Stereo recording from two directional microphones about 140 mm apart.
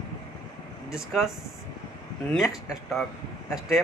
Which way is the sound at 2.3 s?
Centre (ahead or behind).